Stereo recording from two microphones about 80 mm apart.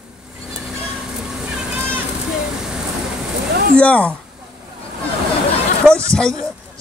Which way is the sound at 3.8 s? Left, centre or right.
Centre.